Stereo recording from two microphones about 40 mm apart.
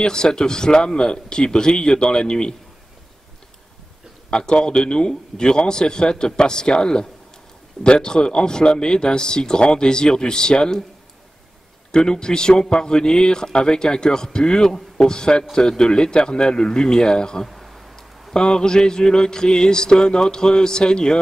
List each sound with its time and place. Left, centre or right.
0.0 s a man's voice: centre
4.3 s a man's voice: left
11.9 s a man's voice: centre
17.5 s a sound: centre
18.3 s a man's voice: left